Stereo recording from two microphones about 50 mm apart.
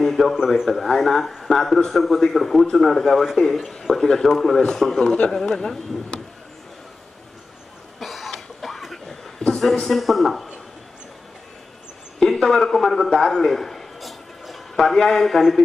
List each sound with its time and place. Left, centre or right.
0.0 s a sound: centre
0.7 s speech: centre
8.0 s cough: centre
9.5 s speech: centre
12.2 s speech: centre
13.4 s a sound: centre